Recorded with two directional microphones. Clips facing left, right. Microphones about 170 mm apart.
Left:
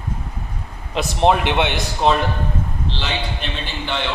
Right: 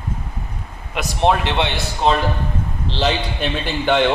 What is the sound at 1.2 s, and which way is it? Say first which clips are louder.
Speech: left 1 dB; 15° left (ahead or behind).